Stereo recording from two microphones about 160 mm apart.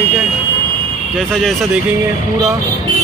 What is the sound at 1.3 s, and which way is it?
Speech, centre (ahead or behind).